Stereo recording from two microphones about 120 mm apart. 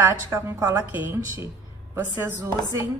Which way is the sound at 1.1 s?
20° right (ahead or behind).